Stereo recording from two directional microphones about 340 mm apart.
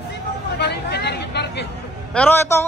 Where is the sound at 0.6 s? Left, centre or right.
Left.